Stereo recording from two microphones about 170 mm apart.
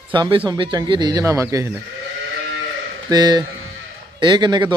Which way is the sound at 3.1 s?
25° right (ahead or behind).